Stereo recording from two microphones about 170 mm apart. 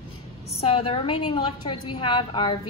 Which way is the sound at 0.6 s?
35° left (ahead or behind).